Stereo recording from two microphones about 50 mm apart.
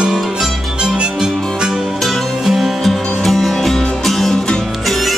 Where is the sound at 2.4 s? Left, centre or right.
Centre.